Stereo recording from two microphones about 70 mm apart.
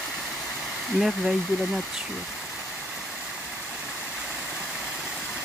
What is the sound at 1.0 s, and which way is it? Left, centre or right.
Speech, centre.